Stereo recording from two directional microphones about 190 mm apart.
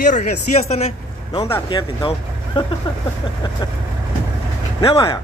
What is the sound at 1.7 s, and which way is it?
Speech, 25° left (ahead or behind).